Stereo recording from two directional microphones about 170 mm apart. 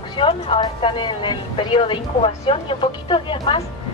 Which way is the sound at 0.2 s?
30° left (ahead or behind).